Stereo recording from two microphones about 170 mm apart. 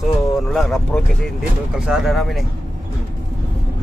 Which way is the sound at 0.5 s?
Centre (ahead or behind).